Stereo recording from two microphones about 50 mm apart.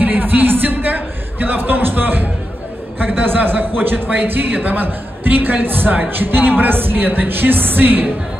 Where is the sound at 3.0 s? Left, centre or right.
Right.